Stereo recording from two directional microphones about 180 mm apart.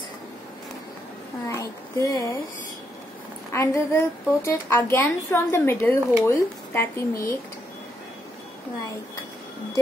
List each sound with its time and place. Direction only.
1.5 s speech: 15° left (ahead or behind)
3.5 s a woman's voice: 15° left (ahead or behind)